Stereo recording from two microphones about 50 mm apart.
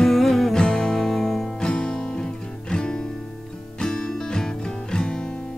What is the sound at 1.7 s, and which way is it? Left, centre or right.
Music, centre.